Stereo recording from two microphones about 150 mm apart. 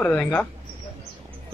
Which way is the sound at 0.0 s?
15° left (ahead or behind).